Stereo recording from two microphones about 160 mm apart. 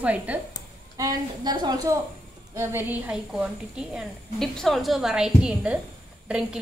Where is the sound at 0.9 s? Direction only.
25° right (ahead or behind).